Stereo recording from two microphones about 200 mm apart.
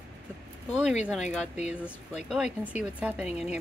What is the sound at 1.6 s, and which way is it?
Speech, 35° left (ahead or behind).